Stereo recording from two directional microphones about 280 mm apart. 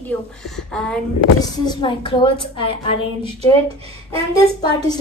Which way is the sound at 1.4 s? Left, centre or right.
Centre.